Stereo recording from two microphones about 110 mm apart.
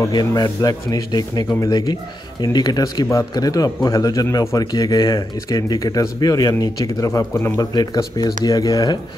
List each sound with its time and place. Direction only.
0.1 s speech: 35° left (ahead or behind)
7.7 s speech: 35° left (ahead or behind)